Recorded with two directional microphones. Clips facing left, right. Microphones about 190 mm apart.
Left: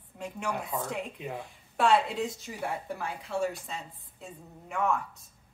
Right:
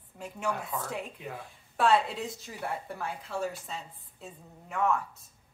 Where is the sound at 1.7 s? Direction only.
Centre (ahead or behind).